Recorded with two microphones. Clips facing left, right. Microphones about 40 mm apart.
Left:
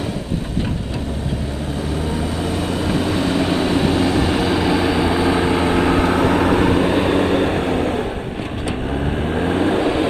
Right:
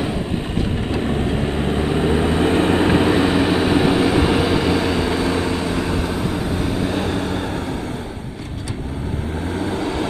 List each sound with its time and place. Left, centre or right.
1.8 s vehicle: right; by 6.9 s left
6.9 s vehicle: left
9.5 s vehicle: left